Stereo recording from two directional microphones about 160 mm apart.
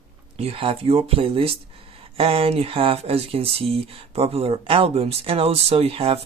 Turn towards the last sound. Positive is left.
turn(degrees=-35)  # may be behind; listen again after turning